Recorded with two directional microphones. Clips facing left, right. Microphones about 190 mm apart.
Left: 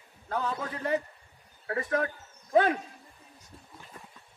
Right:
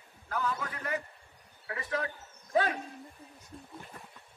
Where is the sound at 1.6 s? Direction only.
45° left (ahead or behind).